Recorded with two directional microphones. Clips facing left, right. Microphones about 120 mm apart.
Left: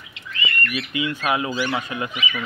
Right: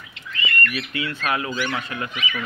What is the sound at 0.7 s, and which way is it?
Speech, 15° left (ahead or behind).